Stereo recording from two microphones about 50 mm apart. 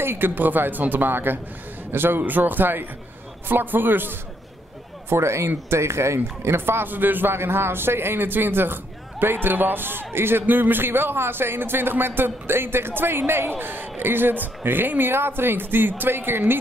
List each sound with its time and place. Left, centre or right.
0.0 s speech: right
0.3 s a man's voice: right
5.1 s a man's voice: right
10.4 s a man's voice: right